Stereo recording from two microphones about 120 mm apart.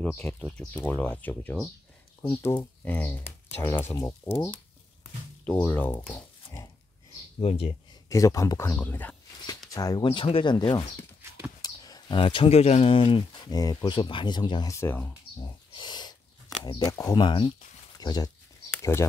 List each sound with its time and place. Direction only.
0.0 s speech: 10° left (ahead or behind)
2.2 s speech: 25° left (ahead or behind)
7.3 s speech: 55° left (ahead or behind)
8.1 s speech: 25° left (ahead or behind)
9.7 s speech: 30° left (ahead or behind)
10.0 s speech: 50° left (ahead or behind)
14.7 s speech: 20° left (ahead or behind)
15.4 s a sound: 40° left (ahead or behind)
17.0 s speech: 35° left (ahead or behind)
18.7 s a sound: 20° left (ahead or behind)